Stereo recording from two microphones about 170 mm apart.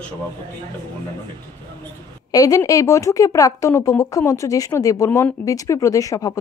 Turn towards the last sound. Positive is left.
turn(degrees=20)  # may be behind; listen again after turning